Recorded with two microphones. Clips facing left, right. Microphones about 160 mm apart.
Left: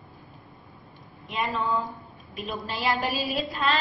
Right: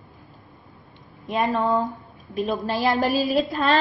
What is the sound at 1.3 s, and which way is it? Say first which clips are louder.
A woman's voice: right 6 dB; 45° right (ahead or behind).